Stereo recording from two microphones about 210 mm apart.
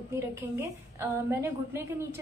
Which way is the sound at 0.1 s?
15° right (ahead or behind).